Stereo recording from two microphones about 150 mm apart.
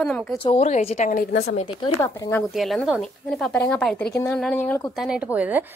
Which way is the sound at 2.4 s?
Centre (ahead or behind).